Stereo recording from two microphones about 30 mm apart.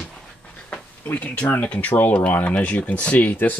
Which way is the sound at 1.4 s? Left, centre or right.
Left.